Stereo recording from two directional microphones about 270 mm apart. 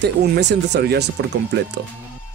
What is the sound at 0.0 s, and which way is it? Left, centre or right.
Speech, right.